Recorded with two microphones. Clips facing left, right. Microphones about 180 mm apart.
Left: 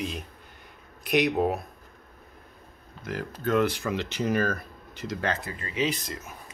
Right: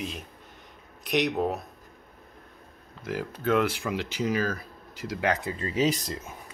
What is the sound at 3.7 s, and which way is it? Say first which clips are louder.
Speech: left 1 dB; 5° right (ahead or behind).